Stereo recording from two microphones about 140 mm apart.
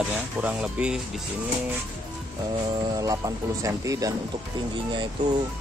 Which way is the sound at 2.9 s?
25° right (ahead or behind).